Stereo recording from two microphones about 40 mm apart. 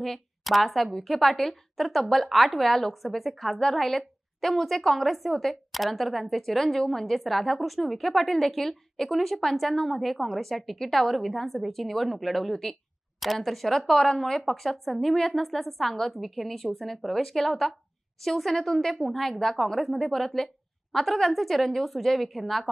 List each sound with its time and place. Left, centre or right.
0.4 s speech: centre